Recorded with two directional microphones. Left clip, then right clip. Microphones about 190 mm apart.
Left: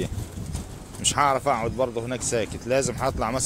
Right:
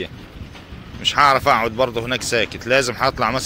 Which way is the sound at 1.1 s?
5° left (ahead or behind).